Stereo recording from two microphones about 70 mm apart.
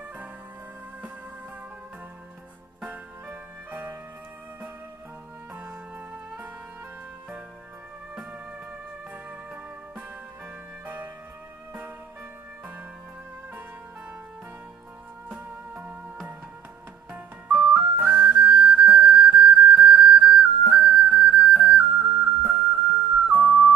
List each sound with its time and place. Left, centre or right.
2.8 s music: right
5.5 s music: right
8.1 s music: centre
15.2 s music: centre
17.1 s music: centre